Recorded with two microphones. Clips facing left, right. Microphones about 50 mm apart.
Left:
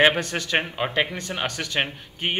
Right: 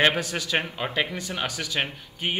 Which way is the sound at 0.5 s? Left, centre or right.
Centre.